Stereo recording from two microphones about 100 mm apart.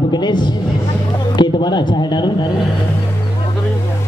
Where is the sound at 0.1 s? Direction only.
45° left (ahead or behind).